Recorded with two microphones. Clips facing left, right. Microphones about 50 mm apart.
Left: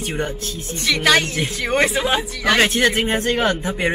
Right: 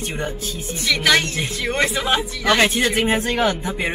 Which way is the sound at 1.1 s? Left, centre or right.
Centre.